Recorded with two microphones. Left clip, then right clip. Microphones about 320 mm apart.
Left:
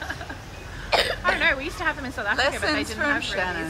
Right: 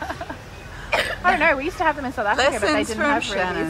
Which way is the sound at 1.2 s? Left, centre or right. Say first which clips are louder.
Right 4 dB; centre.